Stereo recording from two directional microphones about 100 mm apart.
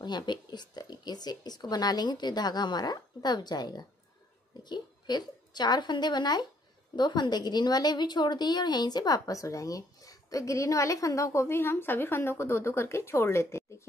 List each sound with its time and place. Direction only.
0.0 s a woman's voice: 45° left (ahead or behind); by 13.8 s 25° left (ahead or behind)